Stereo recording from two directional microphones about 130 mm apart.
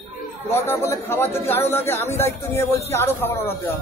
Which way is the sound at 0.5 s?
20° left (ahead or behind).